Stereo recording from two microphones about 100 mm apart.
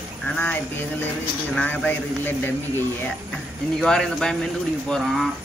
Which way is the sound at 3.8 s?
5° left (ahead or behind).